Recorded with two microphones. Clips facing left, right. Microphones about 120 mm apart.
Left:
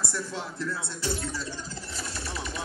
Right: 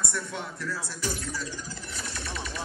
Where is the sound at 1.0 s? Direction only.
25° left (ahead or behind).